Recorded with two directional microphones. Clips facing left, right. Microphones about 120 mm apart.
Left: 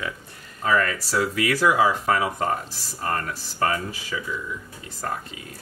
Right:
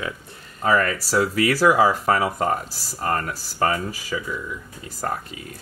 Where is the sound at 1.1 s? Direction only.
35° right (ahead or behind).